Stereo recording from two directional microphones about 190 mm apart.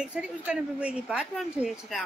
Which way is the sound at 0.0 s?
5° right (ahead or behind).